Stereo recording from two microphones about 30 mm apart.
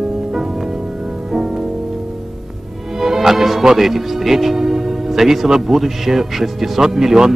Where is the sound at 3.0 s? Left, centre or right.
Centre.